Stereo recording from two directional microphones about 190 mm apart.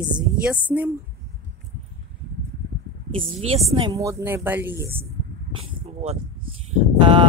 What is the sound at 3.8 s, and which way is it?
Speech, 20° right (ahead or behind).